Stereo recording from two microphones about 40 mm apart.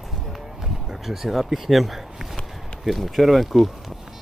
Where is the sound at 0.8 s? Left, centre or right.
Centre.